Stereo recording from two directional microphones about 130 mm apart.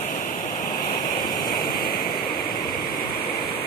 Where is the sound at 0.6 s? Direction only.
90° left.